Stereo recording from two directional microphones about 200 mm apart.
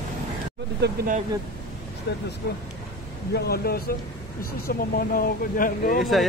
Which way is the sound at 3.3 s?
50° left (ahead or behind).